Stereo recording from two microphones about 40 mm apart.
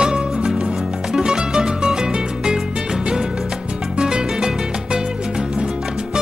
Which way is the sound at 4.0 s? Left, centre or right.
Right.